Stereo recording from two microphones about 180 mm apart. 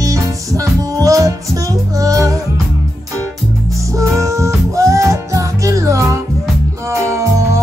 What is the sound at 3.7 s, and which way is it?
Music, 15° right (ahead or behind).